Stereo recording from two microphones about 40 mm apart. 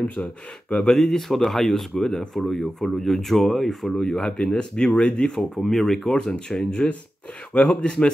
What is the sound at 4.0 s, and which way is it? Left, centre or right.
Speech, centre.